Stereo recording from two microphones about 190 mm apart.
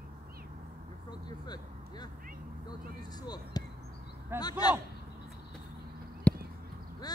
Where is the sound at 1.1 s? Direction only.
20° left (ahead or behind).